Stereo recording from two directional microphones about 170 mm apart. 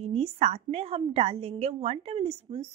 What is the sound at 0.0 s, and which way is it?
A woman's voice, 35° right (ahead or behind).